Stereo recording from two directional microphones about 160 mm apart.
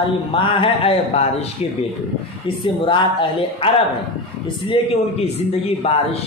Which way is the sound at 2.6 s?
30° left (ahead or behind).